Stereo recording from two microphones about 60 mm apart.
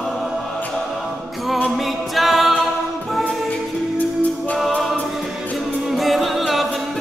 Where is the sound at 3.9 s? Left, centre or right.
Left.